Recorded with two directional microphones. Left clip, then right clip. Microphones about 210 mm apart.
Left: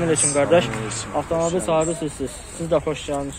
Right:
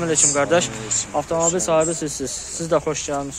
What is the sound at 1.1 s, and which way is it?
Speech, 40° right (ahead or behind).